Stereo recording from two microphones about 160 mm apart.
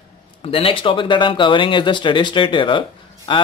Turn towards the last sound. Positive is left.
turn(degrees=30)  # may be behind; listen again after turning